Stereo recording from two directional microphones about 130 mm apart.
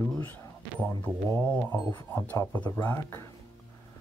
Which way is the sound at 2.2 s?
15° left (ahead or behind).